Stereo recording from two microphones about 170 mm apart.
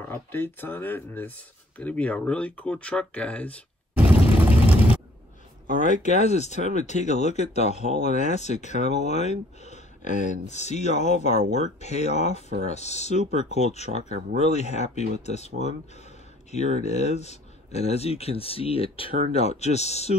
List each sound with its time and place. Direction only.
0.1 s speech: 15° left (ahead or behind)
4.0 s vehicle: 10° right (ahead or behind)
5.7 s speech: 45° left (ahead or behind)